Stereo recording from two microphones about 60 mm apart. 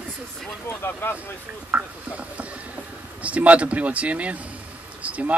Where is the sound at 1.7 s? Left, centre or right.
Right.